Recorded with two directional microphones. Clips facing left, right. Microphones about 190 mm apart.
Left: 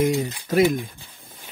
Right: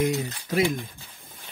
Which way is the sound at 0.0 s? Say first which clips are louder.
Left 4 dB; 45° left (ahead or behind).